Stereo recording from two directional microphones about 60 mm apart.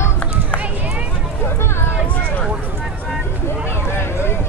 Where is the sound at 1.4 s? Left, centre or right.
Left.